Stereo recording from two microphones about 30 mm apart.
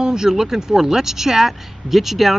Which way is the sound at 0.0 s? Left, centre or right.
Right.